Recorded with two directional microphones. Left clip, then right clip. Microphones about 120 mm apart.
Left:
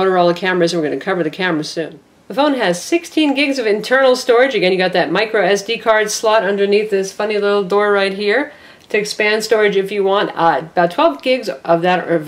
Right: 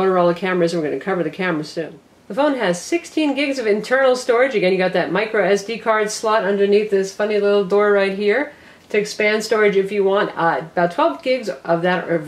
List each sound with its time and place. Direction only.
0.0 s speech: 30° left (ahead or behind)